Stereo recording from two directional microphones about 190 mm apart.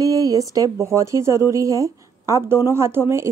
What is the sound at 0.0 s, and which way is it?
A woman's voice, 20° right (ahead or behind).